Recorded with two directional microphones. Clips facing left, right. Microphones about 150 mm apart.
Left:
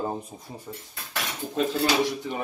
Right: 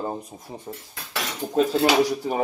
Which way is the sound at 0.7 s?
40° right (ahead or behind).